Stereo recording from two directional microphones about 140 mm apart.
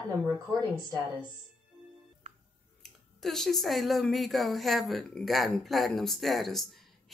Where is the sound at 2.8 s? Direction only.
5° left (ahead or behind).